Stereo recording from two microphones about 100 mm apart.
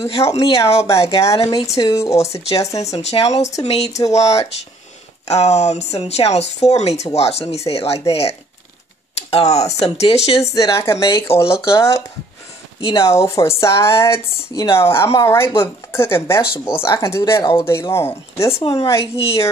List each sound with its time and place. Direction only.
0.2 s speech: 30° left (ahead or behind)
2.8 s speech: 90° left
4.0 s speech: 35° left (ahead or behind)
5.3 s speech: 90° left
10.4 s speech: 35° left (ahead or behind)
18.6 s a woman's voice: 60° left (ahead or behind)
18.9 s a woman's voice: 70° left (ahead or behind)